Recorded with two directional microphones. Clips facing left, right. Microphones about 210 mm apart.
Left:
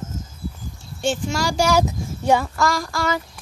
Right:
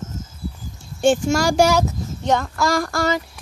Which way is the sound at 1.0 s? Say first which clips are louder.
Right 6 dB; 50° right (ahead or behind).